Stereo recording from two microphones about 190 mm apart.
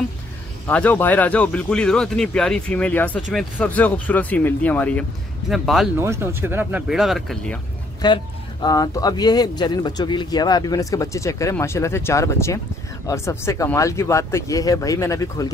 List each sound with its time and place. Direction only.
0.7 s speech: 10° left (ahead or behind)
5.9 s speech: 15° right (ahead or behind); by 7.6 s 5° left (ahead or behind)
8.0 s speech: 20° left (ahead or behind)